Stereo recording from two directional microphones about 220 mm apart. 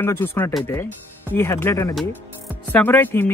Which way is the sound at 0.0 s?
10° left (ahead or behind).